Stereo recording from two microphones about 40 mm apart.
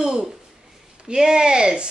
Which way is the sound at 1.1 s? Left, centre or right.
Centre.